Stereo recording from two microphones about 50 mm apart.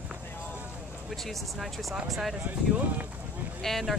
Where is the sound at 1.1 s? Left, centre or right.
Centre.